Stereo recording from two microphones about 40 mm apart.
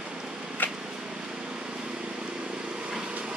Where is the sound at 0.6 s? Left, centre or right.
Left.